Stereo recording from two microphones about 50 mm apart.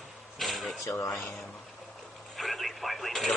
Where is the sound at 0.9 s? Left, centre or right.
Left.